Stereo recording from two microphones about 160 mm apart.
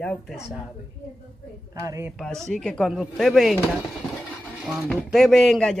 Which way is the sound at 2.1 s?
5° left (ahead or behind).